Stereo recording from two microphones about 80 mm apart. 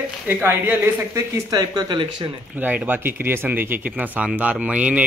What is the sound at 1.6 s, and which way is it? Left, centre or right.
Speech, right.